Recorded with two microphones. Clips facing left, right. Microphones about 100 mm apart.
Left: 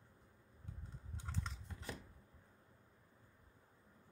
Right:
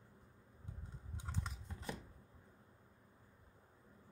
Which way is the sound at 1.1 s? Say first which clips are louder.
Even; 15° right (ahead or behind).